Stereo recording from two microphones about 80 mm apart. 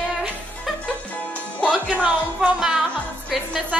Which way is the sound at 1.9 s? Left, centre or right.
Centre.